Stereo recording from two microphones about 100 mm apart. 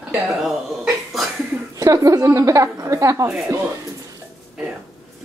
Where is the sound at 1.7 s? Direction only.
35° right (ahead or behind).